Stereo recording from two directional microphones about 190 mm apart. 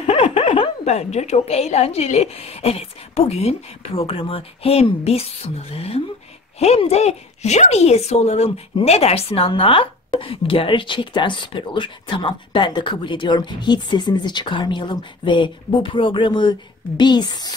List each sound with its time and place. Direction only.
0.0 s a woman's voice: 30° left (ahead or behind)